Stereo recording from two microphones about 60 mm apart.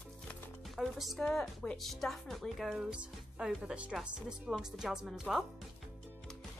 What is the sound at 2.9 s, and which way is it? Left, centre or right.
Speech, centre.